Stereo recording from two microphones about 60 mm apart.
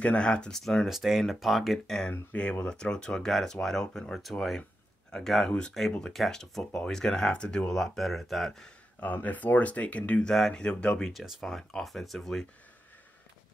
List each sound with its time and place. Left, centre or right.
0.0 s speech: centre
0.8 s speech: centre
2.0 s speech: centre
9.0 s speech: left
10.2 s speech: centre
10.5 s speech: centre
11.1 s speech: centre